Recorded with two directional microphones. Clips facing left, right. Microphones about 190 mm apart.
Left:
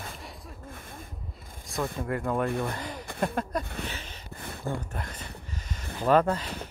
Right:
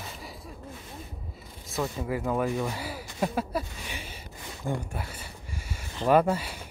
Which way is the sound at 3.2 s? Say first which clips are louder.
Right 1 dB; 5° right (ahead or behind).